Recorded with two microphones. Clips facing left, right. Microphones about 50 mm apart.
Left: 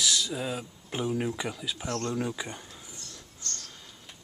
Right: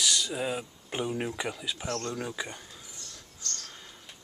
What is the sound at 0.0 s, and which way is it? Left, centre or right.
Speech, centre.